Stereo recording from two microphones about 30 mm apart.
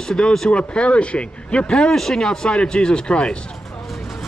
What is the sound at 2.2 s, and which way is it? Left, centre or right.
Speech, left.